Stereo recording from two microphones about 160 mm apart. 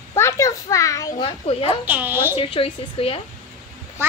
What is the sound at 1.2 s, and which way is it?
Speech, 35° left (ahead or behind).